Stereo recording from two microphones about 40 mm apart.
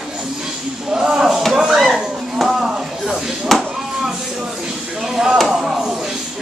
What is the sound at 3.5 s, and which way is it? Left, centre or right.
Chop, centre.